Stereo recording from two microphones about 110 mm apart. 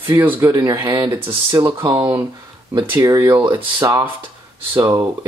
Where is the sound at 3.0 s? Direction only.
30° right (ahead or behind).